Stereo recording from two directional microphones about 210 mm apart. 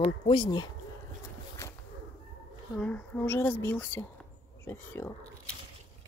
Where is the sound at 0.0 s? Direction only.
25° left (ahead or behind).